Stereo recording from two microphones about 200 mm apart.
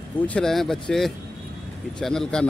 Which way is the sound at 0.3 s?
Centre (ahead or behind).